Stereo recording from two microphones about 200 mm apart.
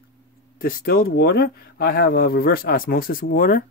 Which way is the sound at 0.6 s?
50° left (ahead or behind).